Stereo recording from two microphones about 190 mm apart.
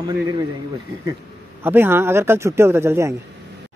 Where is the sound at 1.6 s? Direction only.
10° right (ahead or behind).